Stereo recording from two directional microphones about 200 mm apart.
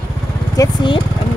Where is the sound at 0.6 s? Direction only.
25° left (ahead or behind).